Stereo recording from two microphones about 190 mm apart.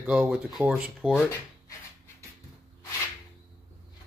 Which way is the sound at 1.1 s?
15° left (ahead or behind).